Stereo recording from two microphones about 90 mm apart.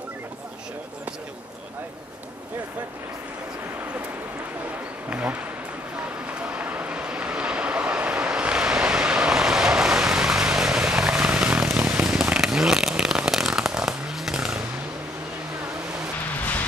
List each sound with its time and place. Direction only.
5.1 s bee: 15° right (ahead or behind)
5.9 s vehicle: 15° right (ahead or behind)
12.2 s fireworks: 5° right (ahead or behind)